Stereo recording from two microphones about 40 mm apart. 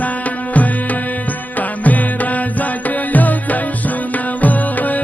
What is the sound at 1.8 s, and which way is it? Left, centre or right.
Music, left.